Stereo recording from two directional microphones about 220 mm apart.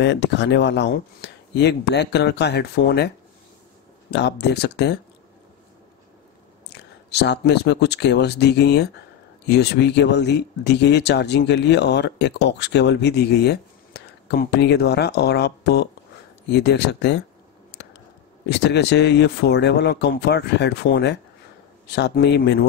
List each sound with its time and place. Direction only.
0.0 s speech: 55° left (ahead or behind)
4.1 s speech: 50° left (ahead or behind)
6.7 s speech: 50° left (ahead or behind)
17.7 s a sound: 50° left (ahead or behind)
18.5 s speech: 50° left (ahead or behind)